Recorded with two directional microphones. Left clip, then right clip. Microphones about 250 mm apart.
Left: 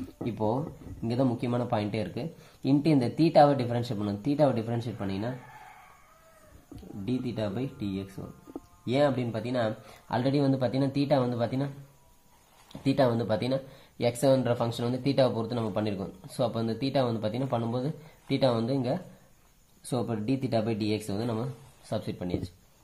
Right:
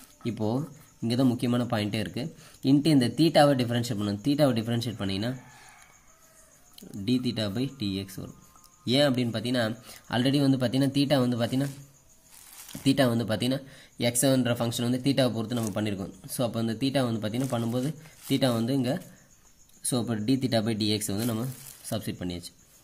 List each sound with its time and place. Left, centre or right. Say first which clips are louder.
0.2 s speech: left 1 dB; right
7.1 s speech: right 3 dB; right
12.8 s speech: right 1 dB; right